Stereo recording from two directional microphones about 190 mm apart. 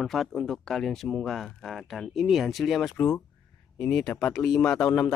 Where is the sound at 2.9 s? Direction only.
15° left (ahead or behind).